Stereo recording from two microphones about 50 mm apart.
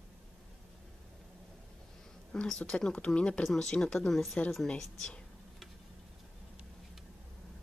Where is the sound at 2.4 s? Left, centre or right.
Centre.